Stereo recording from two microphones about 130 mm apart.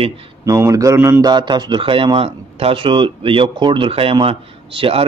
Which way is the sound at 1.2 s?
35° right (ahead or behind).